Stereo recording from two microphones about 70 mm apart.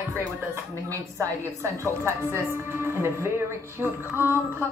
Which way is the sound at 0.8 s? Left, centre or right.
Right.